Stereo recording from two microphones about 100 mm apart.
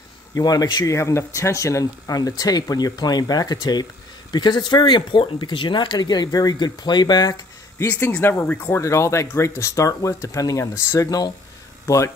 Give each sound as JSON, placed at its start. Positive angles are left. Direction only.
{"t": 0.3, "sound": "speech", "side_deg": 40}
{"t": 0.9, "sound": "speech", "side_deg": 30}
{"t": 7.9, "sound": "speech", "side_deg": 20}